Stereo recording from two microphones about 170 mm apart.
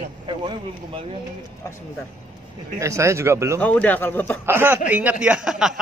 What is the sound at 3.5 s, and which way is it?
Speech, 10° left (ahead or behind).